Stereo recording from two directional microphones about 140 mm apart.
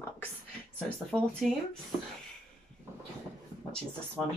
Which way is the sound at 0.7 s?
5° left (ahead or behind).